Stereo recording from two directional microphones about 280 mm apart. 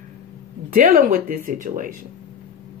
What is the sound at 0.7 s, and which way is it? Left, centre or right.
Speech, right.